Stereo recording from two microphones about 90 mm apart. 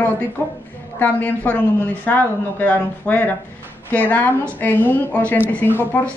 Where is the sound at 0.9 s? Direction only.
20° left (ahead or behind).